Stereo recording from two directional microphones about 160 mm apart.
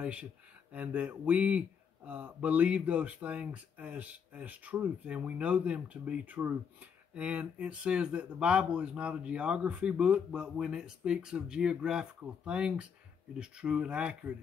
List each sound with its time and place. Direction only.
0.0 s speech: 10° right (ahead or behind)